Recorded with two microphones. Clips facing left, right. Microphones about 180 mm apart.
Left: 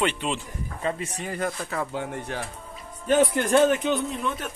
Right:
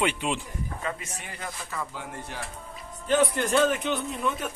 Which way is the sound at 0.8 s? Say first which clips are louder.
Left 11 dB; 35° left (ahead or behind).